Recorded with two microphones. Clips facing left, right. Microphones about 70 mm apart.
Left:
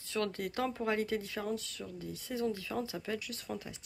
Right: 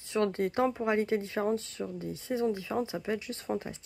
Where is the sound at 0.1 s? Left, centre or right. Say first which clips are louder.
Right 7 dB; right.